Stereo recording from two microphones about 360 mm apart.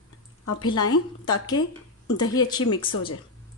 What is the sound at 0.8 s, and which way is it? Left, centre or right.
Speech, left.